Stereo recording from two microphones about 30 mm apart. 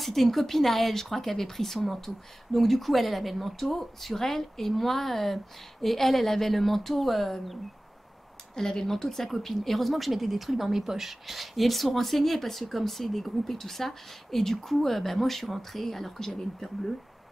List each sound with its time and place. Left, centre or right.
0.0 s speech: centre
8.5 s speech: centre
9.1 s speech: centre
16.3 s speech: centre